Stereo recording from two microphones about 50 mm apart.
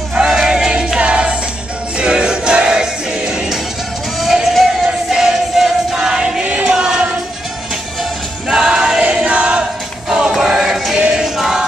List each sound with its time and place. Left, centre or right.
0.1 s crowd: centre
0.9 s music: right
4.2 s music: centre
8.5 s music: centre
9.0 s choir: right
10.0 s choir: centre